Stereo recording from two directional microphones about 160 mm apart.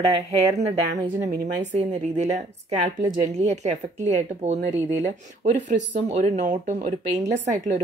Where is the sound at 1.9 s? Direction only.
50° right (ahead or behind).